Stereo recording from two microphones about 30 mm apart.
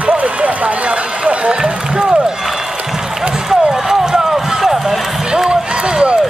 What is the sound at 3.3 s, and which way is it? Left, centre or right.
Run, right.